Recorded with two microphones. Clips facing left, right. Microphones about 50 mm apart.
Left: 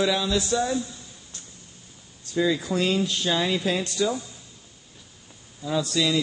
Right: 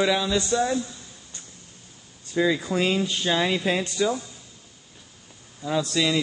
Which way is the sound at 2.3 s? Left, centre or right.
Centre.